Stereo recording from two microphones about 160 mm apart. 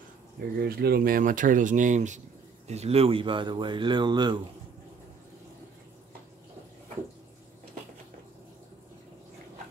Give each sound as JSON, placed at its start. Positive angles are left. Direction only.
{"t": 0.6, "sound": "speech", "side_deg": -75}